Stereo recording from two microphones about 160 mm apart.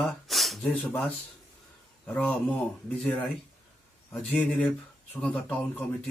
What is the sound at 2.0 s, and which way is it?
Speech, 5° left (ahead or behind).